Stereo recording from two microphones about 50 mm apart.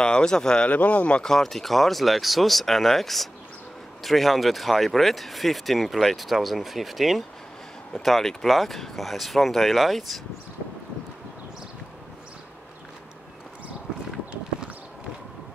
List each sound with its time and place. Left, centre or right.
0.0 s speech: centre
0.7 s a man's voice: left
1.2 s speech: centre